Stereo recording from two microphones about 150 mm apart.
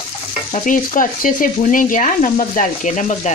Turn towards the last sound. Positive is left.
turn(degrees=55)  # may be behind; listen again after turning